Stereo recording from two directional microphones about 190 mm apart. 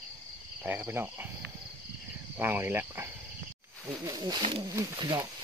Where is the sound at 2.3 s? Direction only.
10° right (ahead or behind).